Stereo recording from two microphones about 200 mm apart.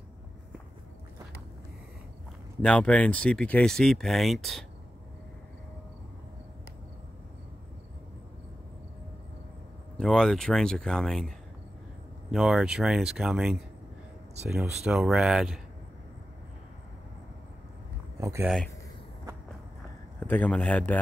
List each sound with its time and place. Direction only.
2.6 s speech: 5° left (ahead or behind)
9.9 s speech: 5° left (ahead or behind)
18.2 s speech: 15° right (ahead or behind)
20.2 s a man's voice: 10° left (ahead or behind)